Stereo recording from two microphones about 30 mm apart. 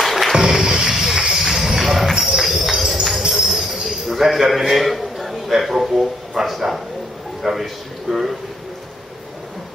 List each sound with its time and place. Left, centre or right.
0.0 s music: centre
0.4 s music: centre
1.5 s a sound: centre
2.4 s cricket: centre
4.1 s a sound: centre
5.6 s a man's voice: centre
8.1 s speech: centre